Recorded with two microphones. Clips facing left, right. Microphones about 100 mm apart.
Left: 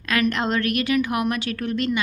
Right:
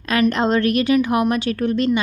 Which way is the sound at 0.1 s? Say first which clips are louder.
Right 5 dB; 30° right (ahead or behind).